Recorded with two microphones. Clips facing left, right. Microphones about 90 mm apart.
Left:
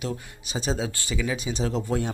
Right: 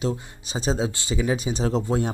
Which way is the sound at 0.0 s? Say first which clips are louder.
Right 5 dB; 30° right (ahead or behind).